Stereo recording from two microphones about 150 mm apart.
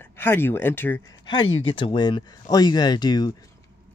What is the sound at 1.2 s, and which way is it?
Speech, 35° left (ahead or behind).